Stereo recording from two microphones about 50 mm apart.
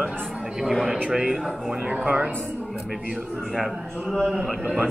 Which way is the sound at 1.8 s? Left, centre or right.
Right.